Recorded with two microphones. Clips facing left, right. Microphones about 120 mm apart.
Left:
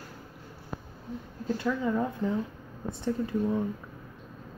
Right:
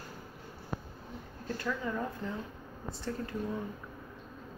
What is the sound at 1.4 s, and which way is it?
Speech, 20° left (ahead or behind).